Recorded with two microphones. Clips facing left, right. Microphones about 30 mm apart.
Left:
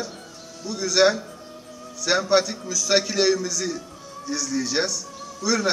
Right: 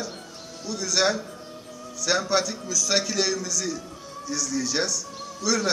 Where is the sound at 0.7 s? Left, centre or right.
Centre.